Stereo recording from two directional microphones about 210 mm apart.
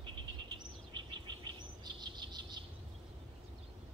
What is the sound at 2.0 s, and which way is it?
Chirp, 20° right (ahead or behind).